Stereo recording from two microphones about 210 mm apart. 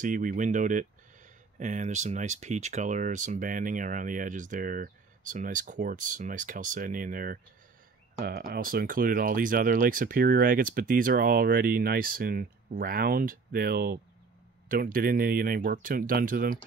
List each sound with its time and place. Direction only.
0.0 s speech: 40° right (ahead or behind)